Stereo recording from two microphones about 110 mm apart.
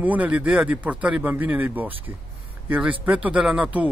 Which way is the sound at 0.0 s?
15° right (ahead or behind).